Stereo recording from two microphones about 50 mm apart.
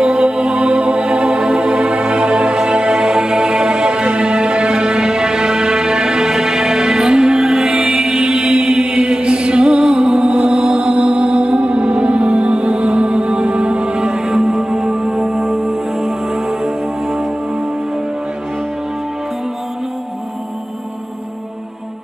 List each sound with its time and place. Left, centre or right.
0.0 s music: centre